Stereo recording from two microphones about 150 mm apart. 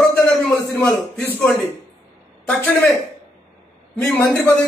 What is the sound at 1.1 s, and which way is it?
A man's voice, 10° left (ahead or behind).